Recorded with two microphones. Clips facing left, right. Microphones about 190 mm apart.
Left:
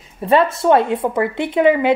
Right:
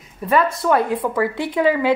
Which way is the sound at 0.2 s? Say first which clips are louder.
Left 3 dB; 25° left (ahead or behind).